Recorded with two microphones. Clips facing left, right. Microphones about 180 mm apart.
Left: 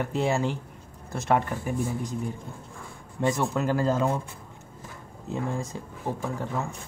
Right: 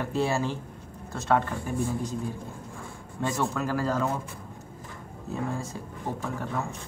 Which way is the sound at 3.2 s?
15° left (ahead or behind).